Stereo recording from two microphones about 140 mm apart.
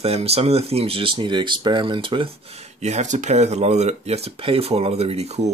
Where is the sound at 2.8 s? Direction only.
55° right (ahead or behind).